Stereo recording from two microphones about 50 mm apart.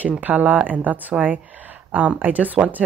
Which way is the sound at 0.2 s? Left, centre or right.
Right.